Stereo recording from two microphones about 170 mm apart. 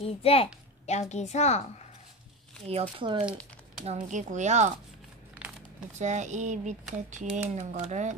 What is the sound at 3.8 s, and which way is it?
Speech, 45° right (ahead or behind).